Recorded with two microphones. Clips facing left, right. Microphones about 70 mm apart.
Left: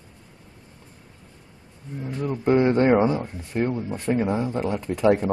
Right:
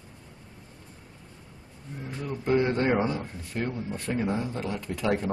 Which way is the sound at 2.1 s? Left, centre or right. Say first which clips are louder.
Left 5 dB; left.